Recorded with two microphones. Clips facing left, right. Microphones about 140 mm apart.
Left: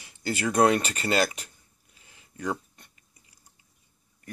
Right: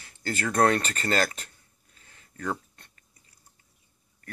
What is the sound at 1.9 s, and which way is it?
Chewing, 10° left (ahead or behind).